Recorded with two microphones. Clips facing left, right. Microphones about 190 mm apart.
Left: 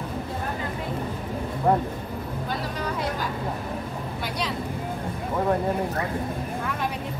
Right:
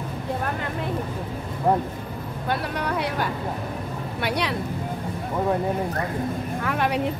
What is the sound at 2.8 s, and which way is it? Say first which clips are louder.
Vehicle: right 3 dB; 65° right (ahead or behind).